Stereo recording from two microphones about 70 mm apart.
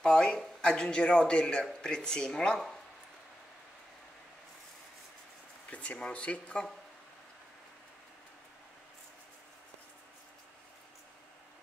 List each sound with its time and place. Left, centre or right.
0.0 s a man's voice: centre
5.7 s a man's voice: centre